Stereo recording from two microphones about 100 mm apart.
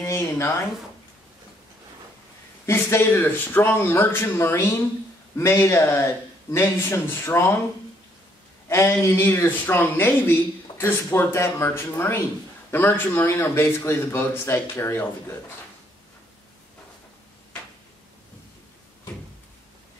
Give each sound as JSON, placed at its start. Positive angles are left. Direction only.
{"t": 0.0, "sound": "a sound", "side_deg": 30}
{"t": 2.6, "sound": "speech", "side_deg": 25}
{"t": 8.6, "sound": "speech", "side_deg": 25}